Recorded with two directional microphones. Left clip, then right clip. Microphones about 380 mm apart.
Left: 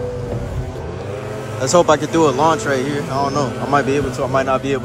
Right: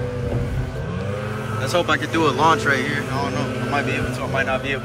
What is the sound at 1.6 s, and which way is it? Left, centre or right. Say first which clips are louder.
Speech: left 7 dB; centre.